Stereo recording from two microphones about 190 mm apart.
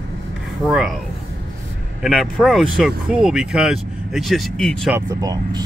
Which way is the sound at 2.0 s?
Centre (ahead or behind).